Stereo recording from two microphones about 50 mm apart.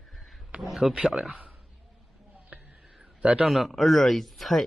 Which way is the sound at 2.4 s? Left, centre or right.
Right.